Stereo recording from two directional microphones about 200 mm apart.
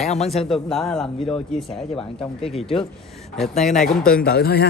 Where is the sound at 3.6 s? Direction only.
40° left (ahead or behind).